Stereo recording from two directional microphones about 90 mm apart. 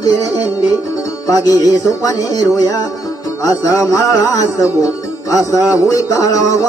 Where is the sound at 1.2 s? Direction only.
40° left (ahead or behind).